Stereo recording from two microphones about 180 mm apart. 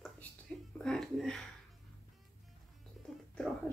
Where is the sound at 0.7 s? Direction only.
5° left (ahead or behind).